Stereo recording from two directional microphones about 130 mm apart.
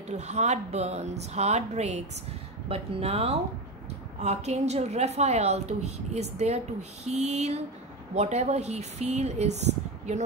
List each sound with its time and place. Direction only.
0.1 s a woman's voice: 60° right (ahead or behind)
2.7 s a woman's voice: 50° right (ahead or behind)